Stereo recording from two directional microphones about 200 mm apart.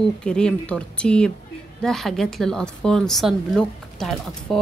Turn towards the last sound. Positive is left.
turn(degrees=0)  # may be behind; listen again after turning